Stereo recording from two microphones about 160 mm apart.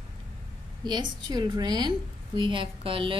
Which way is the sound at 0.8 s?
25° right (ahead or behind).